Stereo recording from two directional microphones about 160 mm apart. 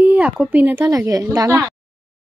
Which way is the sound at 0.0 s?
10° right (ahead or behind).